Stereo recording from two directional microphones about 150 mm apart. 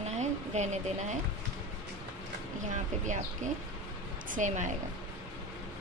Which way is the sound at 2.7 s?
55° right (ahead or behind).